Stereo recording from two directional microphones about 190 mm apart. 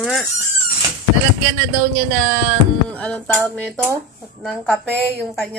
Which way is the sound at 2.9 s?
5° left (ahead or behind).